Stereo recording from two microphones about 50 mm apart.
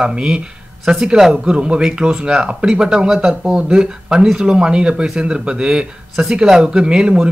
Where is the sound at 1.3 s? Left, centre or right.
Right.